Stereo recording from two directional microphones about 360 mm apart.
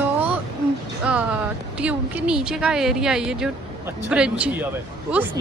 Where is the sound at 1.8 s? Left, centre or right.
Centre.